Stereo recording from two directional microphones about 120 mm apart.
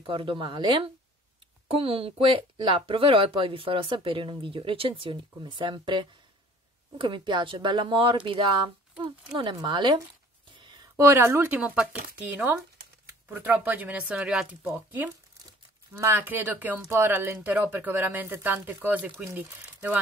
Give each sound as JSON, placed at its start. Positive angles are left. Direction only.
{"t": 0.0, "sound": "speech", "side_deg": -45}
{"t": 1.8, "sound": "speech", "side_deg": -50}
{"t": 9.6, "sound": "speech", "side_deg": -40}
{"t": 11.0, "sound": "speech", "side_deg": -20}
{"t": 15.9, "sound": "speech", "side_deg": -20}